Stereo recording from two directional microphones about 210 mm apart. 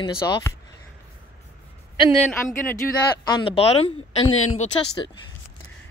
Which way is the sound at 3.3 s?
25° left (ahead or behind).